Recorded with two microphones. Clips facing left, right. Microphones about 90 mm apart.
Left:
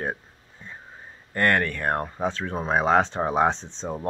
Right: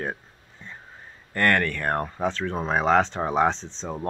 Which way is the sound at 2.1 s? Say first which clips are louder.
Right 1 dB; 10° left (ahead or behind).